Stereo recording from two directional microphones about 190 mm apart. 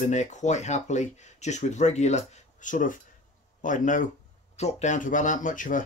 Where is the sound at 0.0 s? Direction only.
40° left (ahead or behind).